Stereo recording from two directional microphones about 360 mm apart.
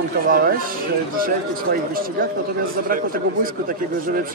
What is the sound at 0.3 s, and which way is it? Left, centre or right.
Speech, right.